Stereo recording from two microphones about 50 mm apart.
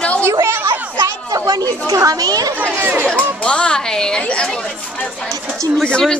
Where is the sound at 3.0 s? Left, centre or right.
Left.